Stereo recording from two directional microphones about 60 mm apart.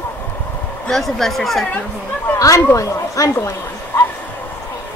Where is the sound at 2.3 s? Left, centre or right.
Left.